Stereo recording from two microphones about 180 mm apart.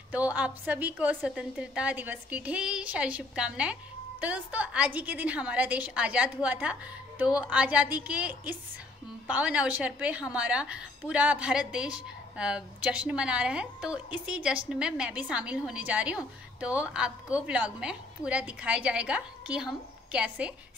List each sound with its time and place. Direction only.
0.1 s a woman's voice: 10° right (ahead or behind)